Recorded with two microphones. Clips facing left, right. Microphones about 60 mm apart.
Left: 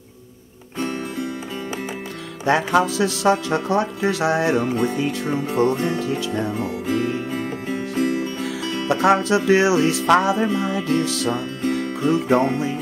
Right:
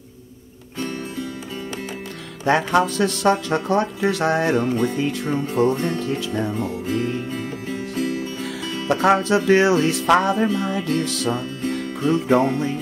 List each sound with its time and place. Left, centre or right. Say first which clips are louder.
2.4 s speech: even; centre
6.9 s music: left 2 dB; centre
7.2 s music: left 2 dB; left
8.4 s speech: left 2 dB; centre
11.7 s music: left 1 dB; centre